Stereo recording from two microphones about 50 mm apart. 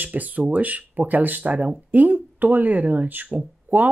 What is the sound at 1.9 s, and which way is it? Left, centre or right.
Speech, right.